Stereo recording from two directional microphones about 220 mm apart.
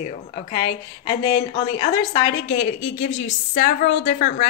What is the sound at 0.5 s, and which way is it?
A woman's voice, 25° left (ahead or behind).